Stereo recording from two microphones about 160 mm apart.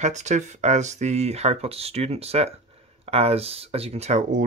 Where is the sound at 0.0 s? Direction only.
45° right (ahead or behind).